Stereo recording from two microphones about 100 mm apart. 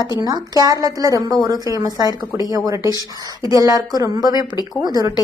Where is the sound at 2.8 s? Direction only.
45° left (ahead or behind).